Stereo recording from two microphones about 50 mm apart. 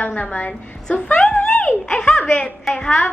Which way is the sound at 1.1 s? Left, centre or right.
Left.